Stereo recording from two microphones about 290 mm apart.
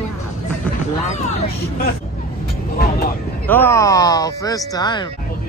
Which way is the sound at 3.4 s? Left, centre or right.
Centre.